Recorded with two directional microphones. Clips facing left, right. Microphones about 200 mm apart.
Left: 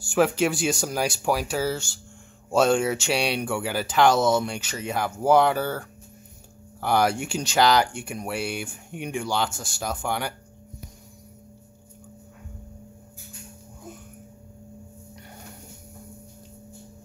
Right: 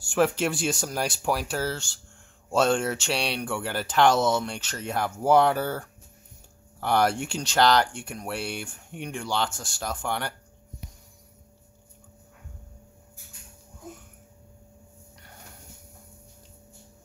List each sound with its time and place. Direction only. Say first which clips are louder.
0.1 s speech: left 2 dB; centre (ahead or behind)